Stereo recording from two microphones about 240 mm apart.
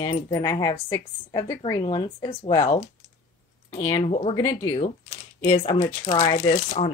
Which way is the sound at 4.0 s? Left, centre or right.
Left.